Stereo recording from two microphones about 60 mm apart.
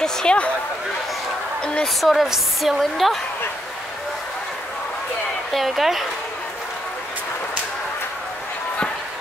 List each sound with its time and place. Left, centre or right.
0.0 s speech: centre
1.6 s a woman's voice: centre
2.0 s speech: centre
5.5 s speech: centre